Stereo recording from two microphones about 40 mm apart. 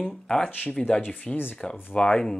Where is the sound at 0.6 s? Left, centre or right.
Left.